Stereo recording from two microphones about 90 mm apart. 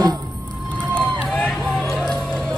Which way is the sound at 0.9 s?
5° left (ahead or behind).